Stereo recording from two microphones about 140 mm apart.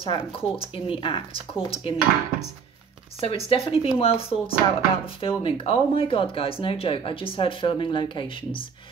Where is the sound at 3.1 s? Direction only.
45° left (ahead or behind).